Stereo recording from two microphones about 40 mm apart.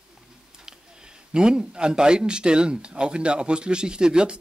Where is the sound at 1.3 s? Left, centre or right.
Right.